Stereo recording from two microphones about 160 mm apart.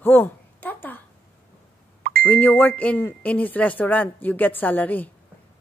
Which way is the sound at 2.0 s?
65° right (ahead or behind).